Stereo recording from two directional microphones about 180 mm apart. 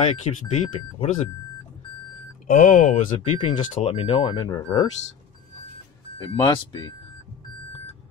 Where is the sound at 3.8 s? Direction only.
30° left (ahead or behind).